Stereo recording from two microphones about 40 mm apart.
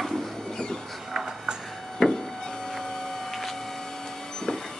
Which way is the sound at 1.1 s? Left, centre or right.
Centre.